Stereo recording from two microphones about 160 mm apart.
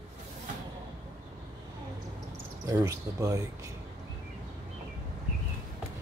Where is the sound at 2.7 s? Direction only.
20° right (ahead or behind).